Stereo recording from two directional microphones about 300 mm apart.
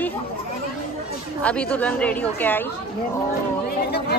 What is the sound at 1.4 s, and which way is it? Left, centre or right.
A woman's voice, centre.